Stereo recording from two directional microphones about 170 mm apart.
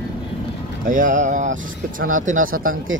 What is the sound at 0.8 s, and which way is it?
Speech, 50° right (ahead or behind).